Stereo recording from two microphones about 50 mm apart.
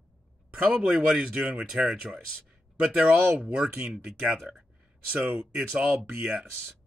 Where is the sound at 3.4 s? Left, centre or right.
Centre.